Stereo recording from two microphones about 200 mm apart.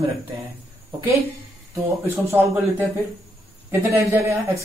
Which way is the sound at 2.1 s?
10° right (ahead or behind).